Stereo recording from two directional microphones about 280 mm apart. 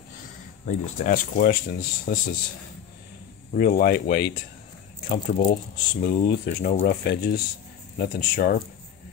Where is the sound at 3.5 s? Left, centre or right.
Left.